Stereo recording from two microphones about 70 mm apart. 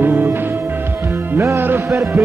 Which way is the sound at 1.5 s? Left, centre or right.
Right.